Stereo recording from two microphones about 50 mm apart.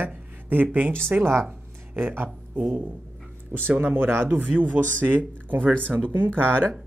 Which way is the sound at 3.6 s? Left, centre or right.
Right.